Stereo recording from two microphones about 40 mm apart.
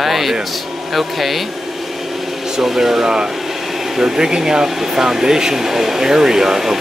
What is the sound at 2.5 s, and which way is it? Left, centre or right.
Speech, centre.